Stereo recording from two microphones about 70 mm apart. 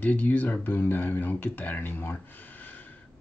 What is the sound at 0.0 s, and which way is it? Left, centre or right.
Speech, left.